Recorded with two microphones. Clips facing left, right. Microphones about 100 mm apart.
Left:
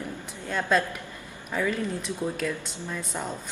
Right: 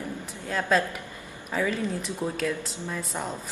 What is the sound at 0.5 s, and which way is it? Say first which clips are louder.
Speech: even; centre (ahead or behind).